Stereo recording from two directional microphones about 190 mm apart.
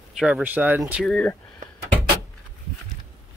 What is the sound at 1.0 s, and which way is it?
Speech, 5° left (ahead or behind).